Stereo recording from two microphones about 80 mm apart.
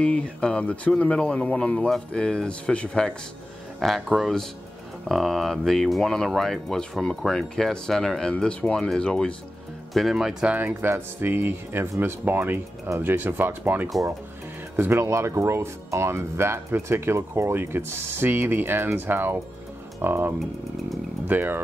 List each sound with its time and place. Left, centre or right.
0.0 s speech: centre
3.8 s speech: centre
9.9 s speech: centre
10.4 s speech: right